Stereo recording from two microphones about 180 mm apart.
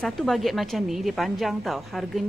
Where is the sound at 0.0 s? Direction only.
Centre (ahead or behind).